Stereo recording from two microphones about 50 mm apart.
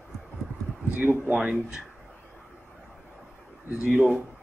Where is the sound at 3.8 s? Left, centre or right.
Centre.